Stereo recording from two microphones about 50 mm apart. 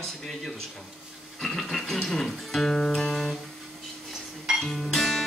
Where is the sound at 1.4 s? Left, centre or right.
Centre.